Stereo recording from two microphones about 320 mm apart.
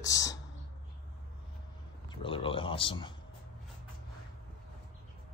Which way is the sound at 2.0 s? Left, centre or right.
Centre.